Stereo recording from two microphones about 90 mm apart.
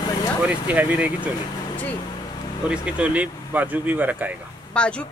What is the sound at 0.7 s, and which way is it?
Speech, 15° right (ahead or behind).